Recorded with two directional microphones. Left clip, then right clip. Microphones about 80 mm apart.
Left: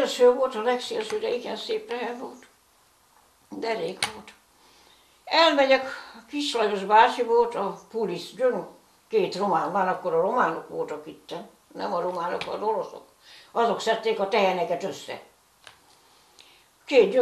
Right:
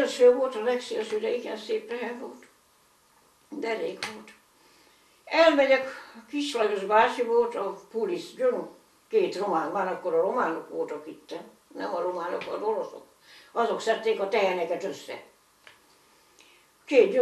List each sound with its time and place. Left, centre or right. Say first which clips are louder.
0.0 s a woman's voice: left 1 dB; left
3.4 s speech: left 2 dB; left
5.2 s a woman's voice: left 1 dB; left
13.6 s a woman's voice: left 2 dB; left
16.3 s a sound: left 3 dB; left